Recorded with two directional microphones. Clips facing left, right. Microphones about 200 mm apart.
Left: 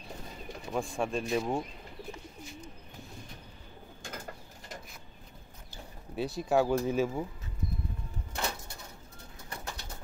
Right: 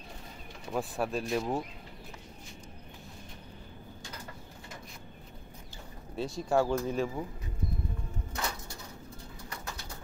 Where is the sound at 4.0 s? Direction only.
50° left (ahead or behind).